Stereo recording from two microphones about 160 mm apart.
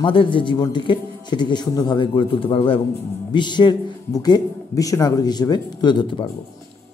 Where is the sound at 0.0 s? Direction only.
30° left (ahead or behind).